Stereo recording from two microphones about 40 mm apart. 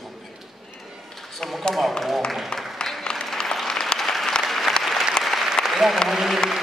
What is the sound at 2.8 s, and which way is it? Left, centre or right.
Applause, centre.